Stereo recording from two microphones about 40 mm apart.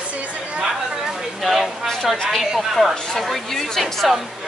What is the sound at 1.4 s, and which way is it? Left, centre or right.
A woman's voice, centre.